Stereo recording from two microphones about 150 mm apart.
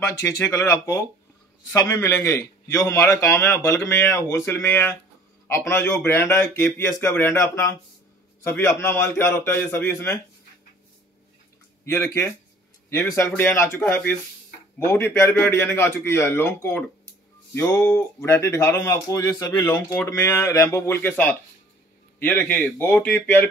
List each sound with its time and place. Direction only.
0.1 s a man's voice: 20° left (ahead or behind)
11.8 s a man's voice: 15° left (ahead or behind)
13.3 s a man's voice: 15° left (ahead or behind)